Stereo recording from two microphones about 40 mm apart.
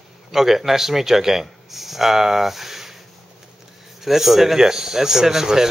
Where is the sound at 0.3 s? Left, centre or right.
Centre.